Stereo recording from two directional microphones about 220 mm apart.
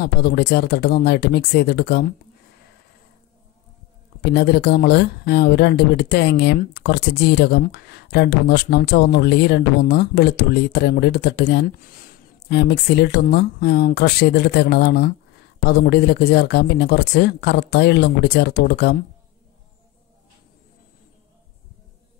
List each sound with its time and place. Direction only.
0.0 s speech: 45° left (ahead or behind)
4.2 s speech: 50° left (ahead or behind)